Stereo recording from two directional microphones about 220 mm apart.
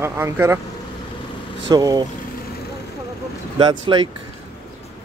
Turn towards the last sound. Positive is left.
turn(degrees=-20)  # may be behind; listen again after turning